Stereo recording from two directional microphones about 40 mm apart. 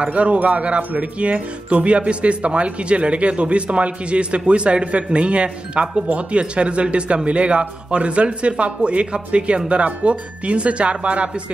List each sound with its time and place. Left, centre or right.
0.0 s a man's voice: right